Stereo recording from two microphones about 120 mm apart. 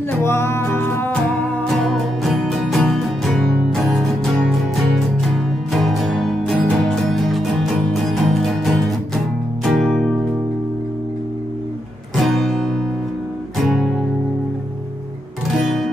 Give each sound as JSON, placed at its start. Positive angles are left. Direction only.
{"t": 0.2, "sound": "music", "side_deg": 20}
{"t": 1.6, "sound": "music", "side_deg": 5}
{"t": 12.2, "sound": "music", "side_deg": 0}
{"t": 15.5, "sound": "music", "side_deg": 0}